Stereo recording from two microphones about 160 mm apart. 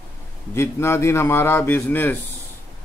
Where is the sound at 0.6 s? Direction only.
15° left (ahead or behind).